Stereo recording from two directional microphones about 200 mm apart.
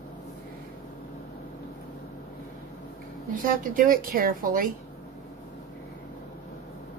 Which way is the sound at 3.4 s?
45° right (ahead or behind).